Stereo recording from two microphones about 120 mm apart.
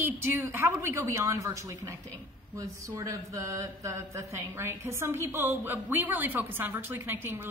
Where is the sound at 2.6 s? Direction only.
30° right (ahead or behind).